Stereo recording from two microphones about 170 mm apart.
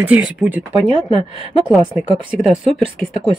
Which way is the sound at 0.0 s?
10° right (ahead or behind).